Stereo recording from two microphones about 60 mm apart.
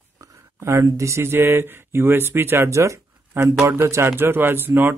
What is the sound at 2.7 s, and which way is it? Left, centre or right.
Speech, right.